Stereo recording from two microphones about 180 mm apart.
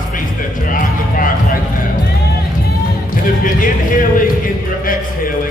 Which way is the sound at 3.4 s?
50° left (ahead or behind).